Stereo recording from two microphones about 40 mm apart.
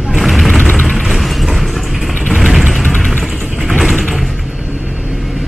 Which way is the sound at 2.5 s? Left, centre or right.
Centre.